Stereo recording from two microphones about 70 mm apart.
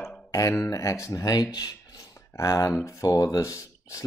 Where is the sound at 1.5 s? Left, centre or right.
Left.